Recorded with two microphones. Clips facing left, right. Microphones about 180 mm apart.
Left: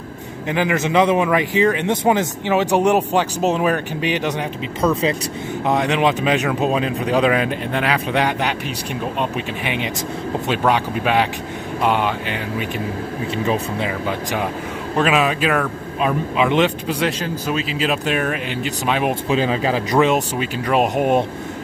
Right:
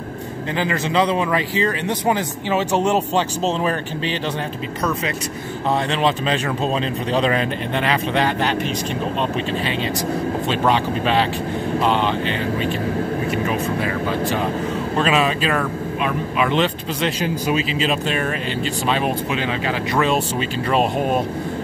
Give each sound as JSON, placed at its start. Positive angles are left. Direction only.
{"t": 0.5, "sound": "speech", "side_deg": 15}
{"t": 5.7, "sound": "speech", "side_deg": 15}
{"t": 10.7, "sound": "speech", "side_deg": 10}
{"t": 15.0, "sound": "speech", "side_deg": 10}
{"t": 17.2, "sound": "speech", "side_deg": -10}
{"t": 17.6, "sound": "speech", "side_deg": 5}
{"t": 19.3, "sound": "speech", "side_deg": 35}
{"t": 20.0, "sound": "speech", "side_deg": 15}